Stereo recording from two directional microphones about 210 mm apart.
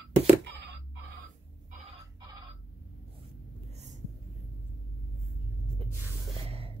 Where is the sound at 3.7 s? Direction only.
35° right (ahead or behind).